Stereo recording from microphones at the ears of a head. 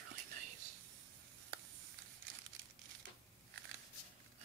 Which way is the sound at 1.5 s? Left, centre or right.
Right.